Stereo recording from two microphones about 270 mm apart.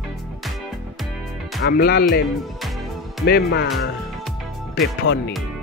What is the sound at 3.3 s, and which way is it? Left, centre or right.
Speech, left.